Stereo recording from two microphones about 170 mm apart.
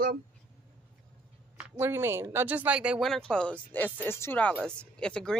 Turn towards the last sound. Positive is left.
turn(degrees=5)  # may be behind; listen again after turning